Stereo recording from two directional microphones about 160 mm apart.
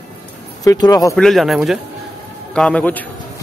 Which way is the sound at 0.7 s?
25° left (ahead or behind).